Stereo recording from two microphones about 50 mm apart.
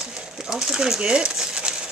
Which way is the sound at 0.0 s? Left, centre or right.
Centre.